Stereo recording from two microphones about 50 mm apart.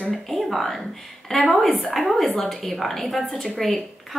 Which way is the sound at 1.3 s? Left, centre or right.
Centre.